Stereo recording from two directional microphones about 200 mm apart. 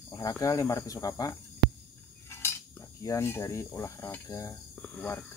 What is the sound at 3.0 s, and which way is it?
Speech, 15° left (ahead or behind).